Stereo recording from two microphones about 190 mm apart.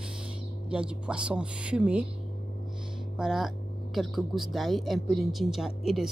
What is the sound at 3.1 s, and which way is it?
A woman's voice, 5° right (ahead or behind).